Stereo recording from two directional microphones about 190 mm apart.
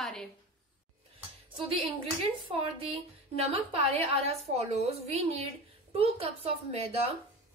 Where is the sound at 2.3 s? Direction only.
25° right (ahead or behind).